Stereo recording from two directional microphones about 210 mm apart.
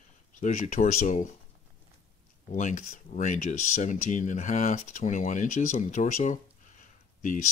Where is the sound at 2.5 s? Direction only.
35° left (ahead or behind).